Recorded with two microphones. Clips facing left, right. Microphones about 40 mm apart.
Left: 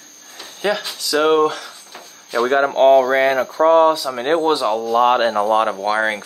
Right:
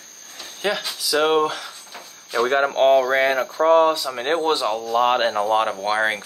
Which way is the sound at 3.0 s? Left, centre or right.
Left.